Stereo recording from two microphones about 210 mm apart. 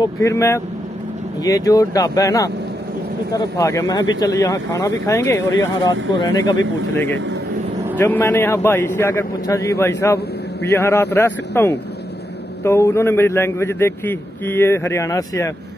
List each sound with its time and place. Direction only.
0.0 s a man's voice: 15° left (ahead or behind)
8.0 s a man's voice: 10° left (ahead or behind)